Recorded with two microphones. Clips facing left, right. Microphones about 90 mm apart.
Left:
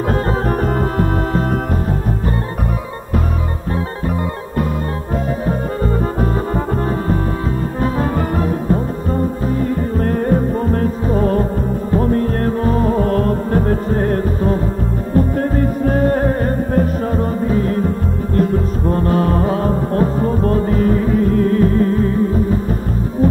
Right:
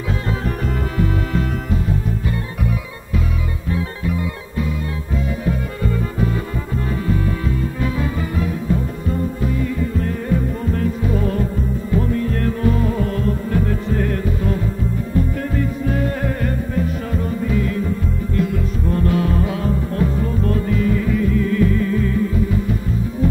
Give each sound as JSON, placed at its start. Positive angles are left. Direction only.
{"t": 0.1, "sound": "music", "side_deg": 40}
{"t": 5.4, "sound": "music", "side_deg": 40}
{"t": 7.8, "sound": "music", "side_deg": 45}